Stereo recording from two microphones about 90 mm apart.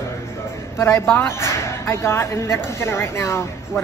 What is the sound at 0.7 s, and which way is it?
Speech, 30° left (ahead or behind).